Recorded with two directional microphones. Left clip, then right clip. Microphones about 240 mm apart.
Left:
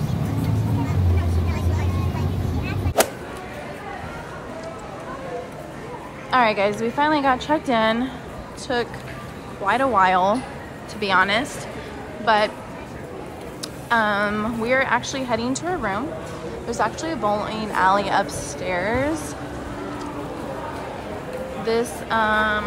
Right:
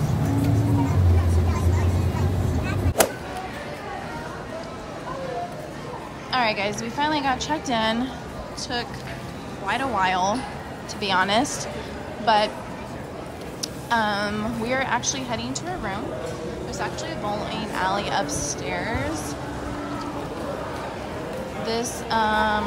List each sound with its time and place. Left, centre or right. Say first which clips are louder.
3.0 s vehicle: left 1 dB; centre
6.3 s a woman's voice: left 5 dB; centre
13.8 s a woman's voice: left 3 dB; centre
21.6 s a woman's voice: left 4 dB; centre